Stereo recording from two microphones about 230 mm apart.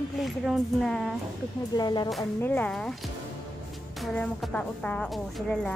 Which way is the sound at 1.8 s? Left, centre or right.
Centre.